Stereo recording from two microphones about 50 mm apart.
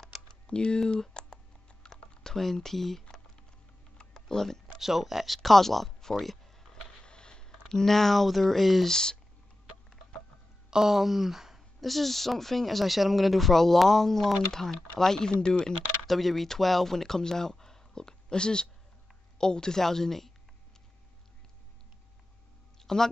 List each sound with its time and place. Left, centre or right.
0.3 s typing: centre
2.2 s speech: centre
4.0 s typing: centre
4.7 s speech: centre
6.9 s a sound: centre
8.9 s a woman's voice: centre
10.7 s a woman's voice: centre
16.1 s a woman's voice: centre
22.8 s a sound: centre